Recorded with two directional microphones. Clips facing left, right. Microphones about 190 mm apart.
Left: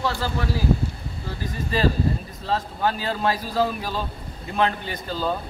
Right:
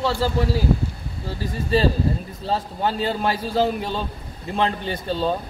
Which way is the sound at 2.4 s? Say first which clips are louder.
Right 1 dB; 25° right (ahead or behind).